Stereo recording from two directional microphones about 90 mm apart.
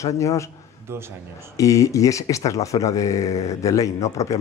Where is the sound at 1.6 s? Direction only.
35° left (ahead or behind).